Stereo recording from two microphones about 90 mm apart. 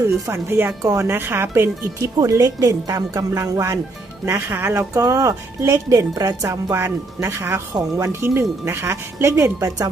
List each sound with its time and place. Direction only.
0.0 s speech: 30° right (ahead or behind)
2.1 s speech: 35° right (ahead or behind)